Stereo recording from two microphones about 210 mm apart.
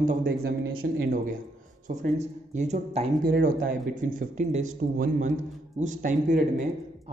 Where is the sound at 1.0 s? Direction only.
45° right (ahead or behind).